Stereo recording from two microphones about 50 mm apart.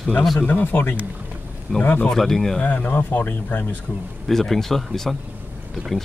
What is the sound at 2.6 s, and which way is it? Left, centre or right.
Speech, left.